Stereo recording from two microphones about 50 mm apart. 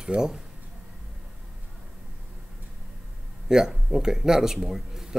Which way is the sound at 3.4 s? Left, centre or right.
Centre.